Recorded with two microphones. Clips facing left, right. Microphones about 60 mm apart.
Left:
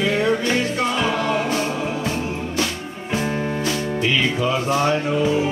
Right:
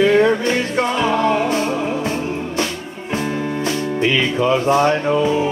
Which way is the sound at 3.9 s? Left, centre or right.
Right.